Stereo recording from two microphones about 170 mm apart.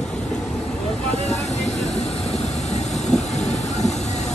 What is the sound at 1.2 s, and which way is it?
Vehicle, 40° left (ahead or behind).